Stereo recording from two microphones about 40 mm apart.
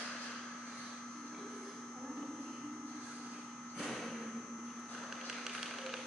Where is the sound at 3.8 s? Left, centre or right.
Centre.